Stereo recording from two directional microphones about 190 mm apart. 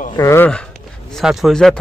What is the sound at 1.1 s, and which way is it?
Speech, centre (ahead or behind).